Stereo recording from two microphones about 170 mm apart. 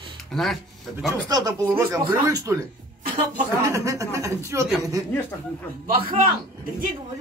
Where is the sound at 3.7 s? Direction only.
20° right (ahead or behind).